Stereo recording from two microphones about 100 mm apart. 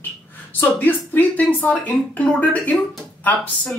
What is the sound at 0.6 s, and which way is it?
Speech, 20° left (ahead or behind).